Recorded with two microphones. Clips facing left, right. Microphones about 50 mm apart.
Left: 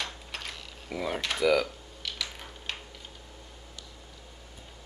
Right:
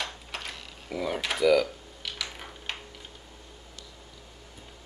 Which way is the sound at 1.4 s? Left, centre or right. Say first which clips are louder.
Right 3 dB; centre.